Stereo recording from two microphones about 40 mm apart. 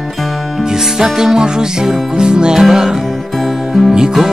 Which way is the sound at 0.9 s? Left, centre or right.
Centre.